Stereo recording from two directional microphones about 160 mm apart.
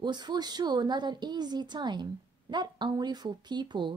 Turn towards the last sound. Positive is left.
turn(degrees=-30)  # may be behind; listen again after turning